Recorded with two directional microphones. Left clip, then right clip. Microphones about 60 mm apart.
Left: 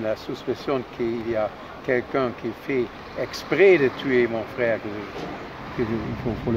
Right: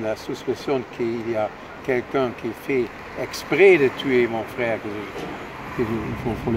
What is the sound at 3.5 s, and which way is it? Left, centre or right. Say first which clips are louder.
Speech: right 2 dB; centre.